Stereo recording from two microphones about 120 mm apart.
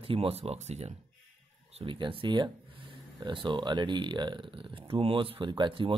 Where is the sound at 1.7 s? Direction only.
45° right (ahead or behind).